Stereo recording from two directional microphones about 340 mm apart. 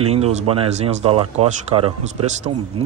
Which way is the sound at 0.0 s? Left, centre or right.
Centre.